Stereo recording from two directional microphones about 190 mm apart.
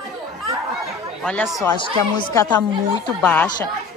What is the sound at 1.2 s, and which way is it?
Speech, centre (ahead or behind).